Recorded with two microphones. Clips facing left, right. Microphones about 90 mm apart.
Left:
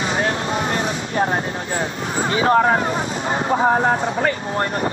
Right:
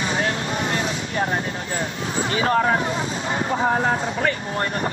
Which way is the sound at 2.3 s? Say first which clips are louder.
Left 4 dB; 30° left (ahead or behind).